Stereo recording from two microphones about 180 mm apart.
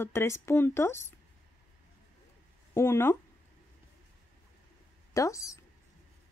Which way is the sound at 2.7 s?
15° left (ahead or behind).